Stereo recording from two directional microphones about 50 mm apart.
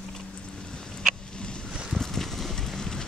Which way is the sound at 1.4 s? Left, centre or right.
Centre.